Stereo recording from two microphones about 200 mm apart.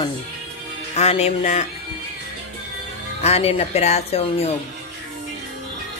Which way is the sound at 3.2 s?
30° left (ahead or behind).